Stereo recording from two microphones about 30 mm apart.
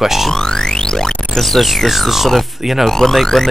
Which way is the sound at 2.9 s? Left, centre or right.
Centre.